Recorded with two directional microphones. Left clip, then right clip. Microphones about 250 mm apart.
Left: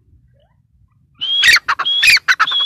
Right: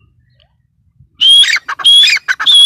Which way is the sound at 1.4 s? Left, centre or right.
Centre.